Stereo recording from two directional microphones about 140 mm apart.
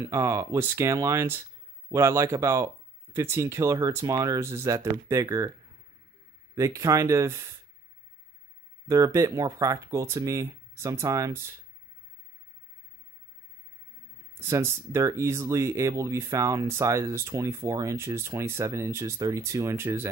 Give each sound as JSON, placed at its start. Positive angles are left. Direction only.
{"t": 0.0, "sound": "speech", "side_deg": -20}
{"t": 6.5, "sound": "speech", "side_deg": -20}
{"t": 8.8, "sound": "speech", "side_deg": -25}
{"t": 14.4, "sound": "speech", "side_deg": -20}